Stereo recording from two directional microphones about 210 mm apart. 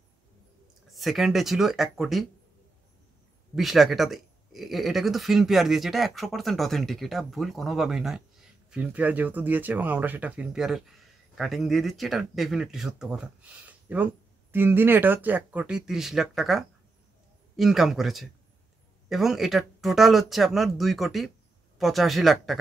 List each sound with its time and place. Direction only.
0.8 s speech: centre (ahead or behind)
3.5 s speech: centre (ahead or behind)